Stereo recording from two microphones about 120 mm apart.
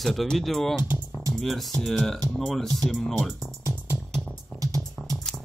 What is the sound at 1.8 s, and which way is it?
Speech, centre (ahead or behind).